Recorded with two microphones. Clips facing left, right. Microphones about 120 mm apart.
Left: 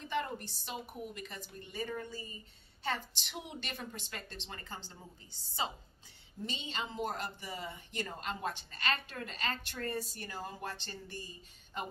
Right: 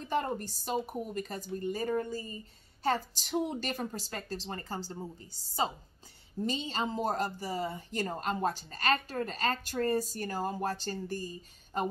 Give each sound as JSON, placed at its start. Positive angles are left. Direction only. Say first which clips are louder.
{"t": 0.0, "sound": "a woman's voice", "louder": "right 5 dB", "side_deg": -40}